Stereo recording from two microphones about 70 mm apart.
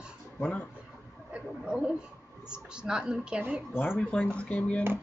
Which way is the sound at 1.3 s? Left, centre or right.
Centre.